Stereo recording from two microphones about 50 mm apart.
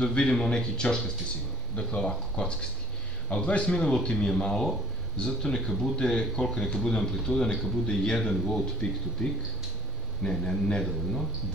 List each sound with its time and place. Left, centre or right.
0.0 s a man's voice: centre
10.2 s a man's voice: centre